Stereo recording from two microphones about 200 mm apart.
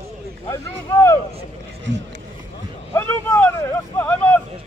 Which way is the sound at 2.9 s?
10° left (ahead or behind).